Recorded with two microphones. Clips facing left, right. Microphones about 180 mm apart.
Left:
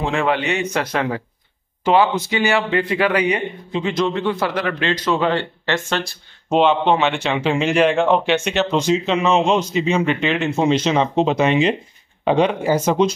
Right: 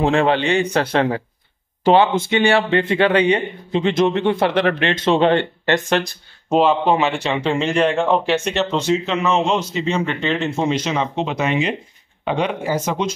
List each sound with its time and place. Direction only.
0.0 s a man's voice: 35° right (ahead or behind); by 6.1 s 15° right (ahead or behind)
6.5 s a man's voice: 5° right (ahead or behind)
8.7 s a man's voice: 15° left (ahead or behind)
10.7 s speech: 25° left (ahead or behind)